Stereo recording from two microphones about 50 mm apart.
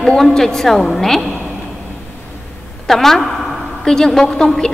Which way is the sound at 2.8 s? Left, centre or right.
Centre.